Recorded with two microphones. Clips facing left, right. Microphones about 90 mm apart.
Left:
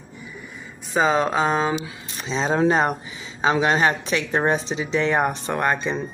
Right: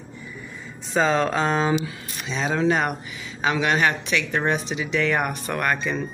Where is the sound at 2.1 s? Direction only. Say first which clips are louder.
Left 3 dB; 30° left (ahead or behind).